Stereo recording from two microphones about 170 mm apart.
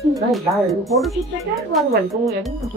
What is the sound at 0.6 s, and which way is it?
Speech, centre (ahead or behind).